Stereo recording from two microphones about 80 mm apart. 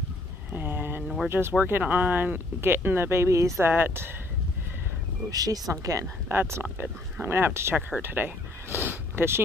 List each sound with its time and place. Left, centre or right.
0.5 s a sound: right
1.3 s speech: centre
1.7 s speech: right
5.3 s speech: right
6.2 s speech: right
8.8 s a sound: right